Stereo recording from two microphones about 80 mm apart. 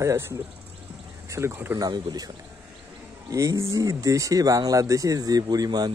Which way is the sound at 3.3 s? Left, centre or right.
Right.